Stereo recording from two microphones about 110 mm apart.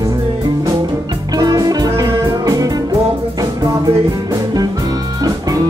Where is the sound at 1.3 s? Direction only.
35° right (ahead or behind).